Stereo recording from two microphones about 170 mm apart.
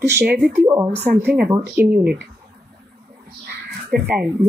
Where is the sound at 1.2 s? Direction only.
65° right (ahead or behind).